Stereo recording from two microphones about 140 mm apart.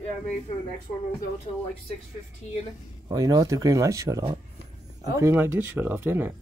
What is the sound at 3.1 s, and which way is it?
Speech, 25° right (ahead or behind).